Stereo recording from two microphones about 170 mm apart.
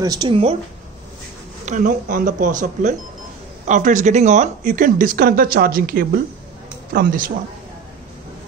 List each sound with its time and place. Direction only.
0.0 s speech: 25° right (ahead or behind)
1.7 s speech: 50° right (ahead or behind)